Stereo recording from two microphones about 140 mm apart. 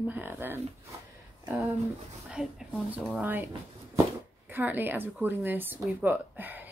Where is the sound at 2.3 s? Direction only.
5° right (ahead or behind).